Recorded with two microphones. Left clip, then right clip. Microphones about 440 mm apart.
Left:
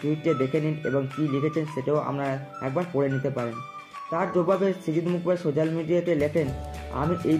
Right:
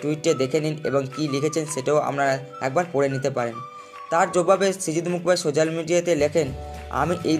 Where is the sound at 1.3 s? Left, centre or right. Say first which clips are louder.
Right 5 dB; right.